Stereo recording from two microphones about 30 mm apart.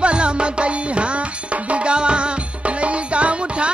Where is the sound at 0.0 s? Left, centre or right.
Right.